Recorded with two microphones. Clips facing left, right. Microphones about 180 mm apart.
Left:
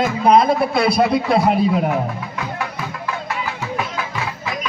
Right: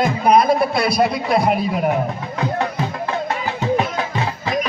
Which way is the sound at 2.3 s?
35° right (ahead or behind).